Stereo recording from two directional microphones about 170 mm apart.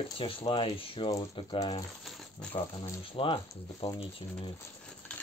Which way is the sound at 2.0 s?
5° left (ahead or behind).